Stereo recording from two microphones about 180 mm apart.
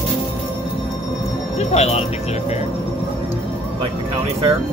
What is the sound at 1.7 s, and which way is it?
Speech, 35° left (ahead or behind).